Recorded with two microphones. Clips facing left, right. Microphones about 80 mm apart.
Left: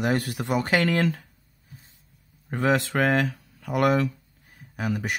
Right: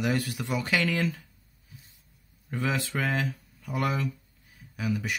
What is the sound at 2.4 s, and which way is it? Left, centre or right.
Speech, left.